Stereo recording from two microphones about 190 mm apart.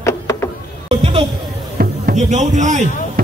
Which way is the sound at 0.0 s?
15° left (ahead or behind).